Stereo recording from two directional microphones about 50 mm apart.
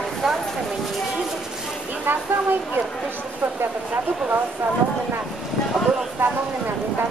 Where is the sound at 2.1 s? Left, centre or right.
Right.